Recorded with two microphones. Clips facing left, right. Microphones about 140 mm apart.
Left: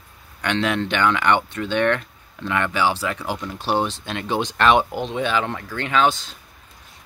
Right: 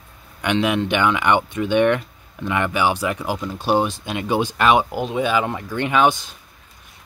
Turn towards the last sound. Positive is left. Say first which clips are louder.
# right 2 dB
turn(degrees=-15)  # may be behind; listen again after turning